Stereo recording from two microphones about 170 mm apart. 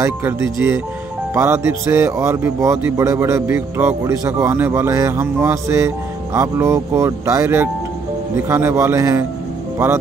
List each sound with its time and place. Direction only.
0.0 s speech: 15° right (ahead or behind)